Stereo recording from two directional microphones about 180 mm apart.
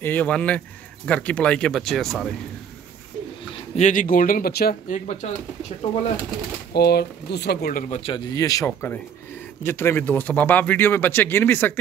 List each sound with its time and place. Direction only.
0.0 s speech: 10° left (ahead or behind)
3.7 s speech: 45° left (ahead or behind)
6.7 s speech: 60° left (ahead or behind)
7.9 s speech: 35° left (ahead or behind)
8.3 s speech: 20° left (ahead or behind)